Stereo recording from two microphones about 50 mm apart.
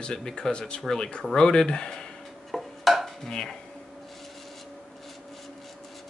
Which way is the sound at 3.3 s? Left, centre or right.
Centre.